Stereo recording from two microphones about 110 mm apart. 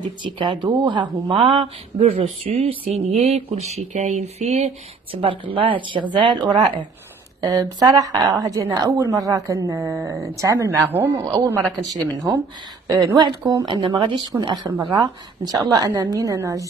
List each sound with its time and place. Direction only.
0.2 s speech: 45° right (ahead or behind); by 4.7 s 85° right
5.1 s speech: 50° right (ahead or behind)
7.4 s a woman's voice: 35° right (ahead or behind)
13.0 s a woman's voice: 35° right (ahead or behind)